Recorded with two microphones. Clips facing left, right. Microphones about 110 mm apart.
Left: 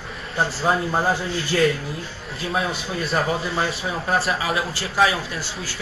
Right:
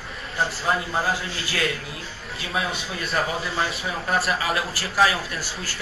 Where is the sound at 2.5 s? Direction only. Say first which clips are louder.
Left 2 dB; 35° left (ahead or behind).